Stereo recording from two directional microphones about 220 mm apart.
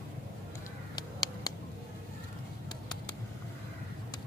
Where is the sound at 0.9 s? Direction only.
20° left (ahead or behind).